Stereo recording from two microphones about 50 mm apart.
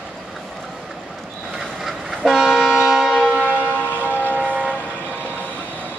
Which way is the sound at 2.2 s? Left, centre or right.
Centre.